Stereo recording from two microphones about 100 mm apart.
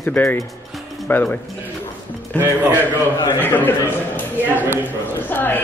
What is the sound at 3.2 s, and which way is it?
Speech, 20° left (ahead or behind).